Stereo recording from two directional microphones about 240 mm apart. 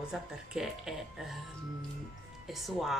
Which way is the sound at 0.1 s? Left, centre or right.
Centre.